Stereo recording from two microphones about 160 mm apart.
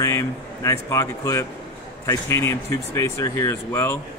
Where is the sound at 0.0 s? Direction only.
20° left (ahead or behind).